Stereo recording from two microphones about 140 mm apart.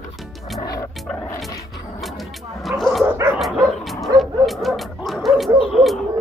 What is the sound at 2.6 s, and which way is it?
Dog, centre (ahead or behind).